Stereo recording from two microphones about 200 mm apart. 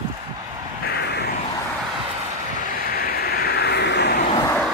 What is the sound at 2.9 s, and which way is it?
Vehicle, 50° left (ahead or behind).